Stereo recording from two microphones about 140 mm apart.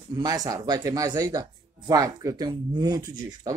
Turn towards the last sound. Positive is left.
turn(degrees=-25)  # may be behind; listen again after turning